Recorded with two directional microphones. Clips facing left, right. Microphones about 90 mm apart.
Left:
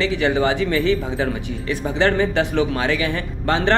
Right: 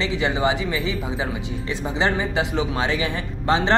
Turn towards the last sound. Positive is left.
turn(degrees=-20)  # may be behind; listen again after turning